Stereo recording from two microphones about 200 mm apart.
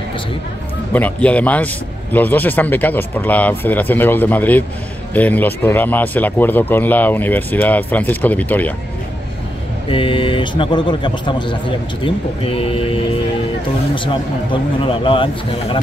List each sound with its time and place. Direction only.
0.9 s speech: 5° left (ahead or behind)
9.8 s a man's voice: 25° left (ahead or behind)